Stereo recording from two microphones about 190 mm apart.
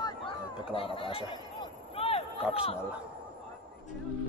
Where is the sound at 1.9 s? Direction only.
30° left (ahead or behind).